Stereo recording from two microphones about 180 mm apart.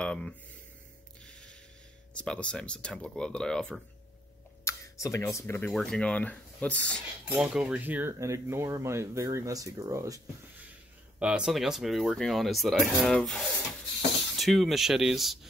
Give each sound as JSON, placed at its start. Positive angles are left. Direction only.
{"t": 0.0, "sound": "speech", "side_deg": 5}
{"t": 1.2, "sound": "a sound", "side_deg": 5}
{"t": 2.1, "sound": "speech", "side_deg": 5}
{"t": 4.6, "sound": "speech", "side_deg": 15}
{"t": 7.2, "sound": "speech", "side_deg": -10}
{"t": 11.1, "sound": "speech", "side_deg": -5}